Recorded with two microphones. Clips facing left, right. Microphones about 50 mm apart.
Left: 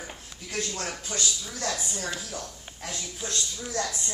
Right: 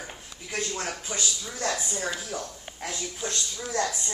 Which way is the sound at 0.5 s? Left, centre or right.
Centre.